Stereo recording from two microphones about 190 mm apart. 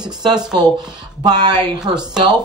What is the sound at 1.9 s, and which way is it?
Speech, 5° right (ahead or behind).